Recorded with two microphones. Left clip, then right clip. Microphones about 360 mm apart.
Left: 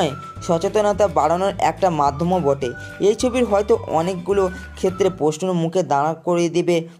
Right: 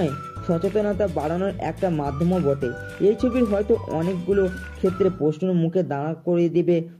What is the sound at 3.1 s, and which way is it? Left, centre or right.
Speech, centre.